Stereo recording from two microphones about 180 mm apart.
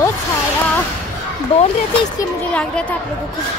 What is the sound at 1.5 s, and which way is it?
Speech, 35° left (ahead or behind).